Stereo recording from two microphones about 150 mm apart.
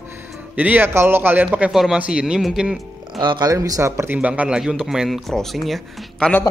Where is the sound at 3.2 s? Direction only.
30° right (ahead or behind); by 6.3 s centre (ahead or behind).